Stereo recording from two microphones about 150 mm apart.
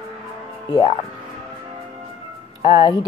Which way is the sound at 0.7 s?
35° left (ahead or behind).